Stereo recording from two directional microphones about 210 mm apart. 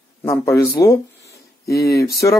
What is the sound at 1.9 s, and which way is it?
Speech, 45° left (ahead or behind).